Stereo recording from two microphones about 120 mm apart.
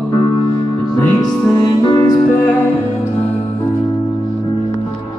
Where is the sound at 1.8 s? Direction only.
40° left (ahead or behind).